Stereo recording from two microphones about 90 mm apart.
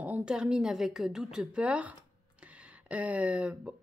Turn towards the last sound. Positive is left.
turn(degrees=-15)  # may be behind; listen again after turning